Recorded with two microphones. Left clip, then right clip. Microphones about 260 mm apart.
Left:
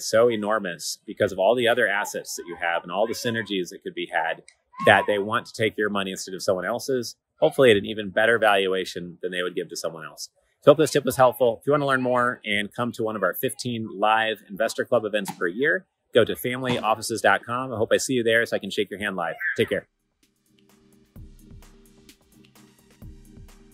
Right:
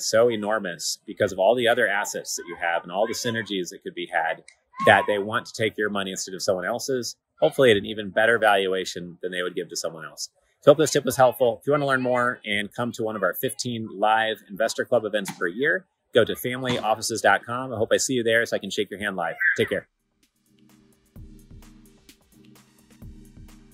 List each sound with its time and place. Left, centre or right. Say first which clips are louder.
0.1 s speech: left 1 dB; centre